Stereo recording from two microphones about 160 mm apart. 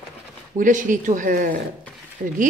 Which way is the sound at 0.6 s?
55° right (ahead or behind).